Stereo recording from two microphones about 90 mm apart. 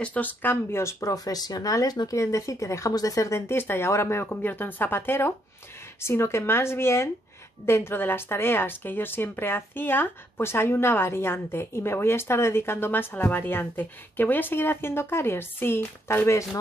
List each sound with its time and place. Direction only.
0.0 s speech: 15° left (ahead or behind)